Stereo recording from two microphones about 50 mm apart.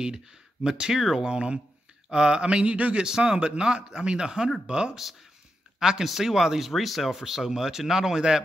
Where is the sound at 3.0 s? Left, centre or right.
Centre.